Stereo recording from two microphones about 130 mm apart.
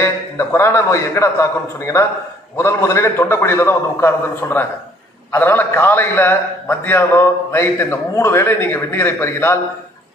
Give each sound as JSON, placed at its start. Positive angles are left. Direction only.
{"t": 0.0, "sound": "a man's voice", "side_deg": 20}